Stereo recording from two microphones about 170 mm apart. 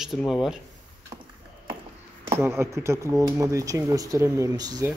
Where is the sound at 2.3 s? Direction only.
15° right (ahead or behind).